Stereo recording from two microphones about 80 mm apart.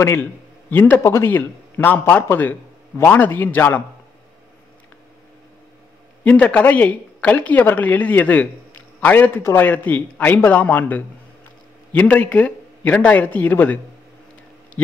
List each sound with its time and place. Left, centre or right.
0.0 s a man's voice: left
1.3 s a man's voice: left
6.2 s speech: centre